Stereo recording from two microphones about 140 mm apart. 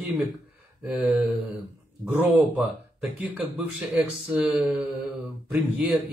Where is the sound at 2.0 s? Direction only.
10° right (ahead or behind).